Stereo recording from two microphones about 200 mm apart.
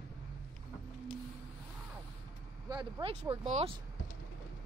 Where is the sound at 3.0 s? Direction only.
30° right (ahead or behind).